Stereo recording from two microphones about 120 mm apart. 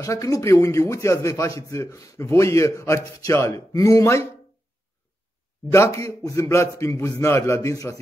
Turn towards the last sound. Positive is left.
turn(degrees=25)  # may be behind; listen again after turning